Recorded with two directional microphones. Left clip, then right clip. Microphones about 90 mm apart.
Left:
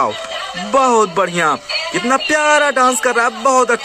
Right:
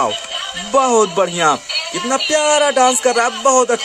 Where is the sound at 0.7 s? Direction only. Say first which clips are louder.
Left 1 dB; 15° right (ahead or behind).